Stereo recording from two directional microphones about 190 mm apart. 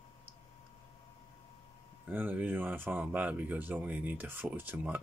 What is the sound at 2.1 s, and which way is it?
Speech, 10° right (ahead or behind).